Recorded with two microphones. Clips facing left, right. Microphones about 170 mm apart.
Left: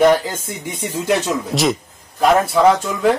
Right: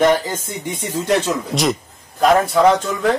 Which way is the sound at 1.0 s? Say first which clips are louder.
Even; 5° left (ahead or behind).